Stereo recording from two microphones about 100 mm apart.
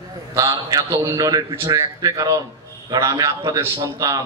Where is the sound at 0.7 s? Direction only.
35° right (ahead or behind).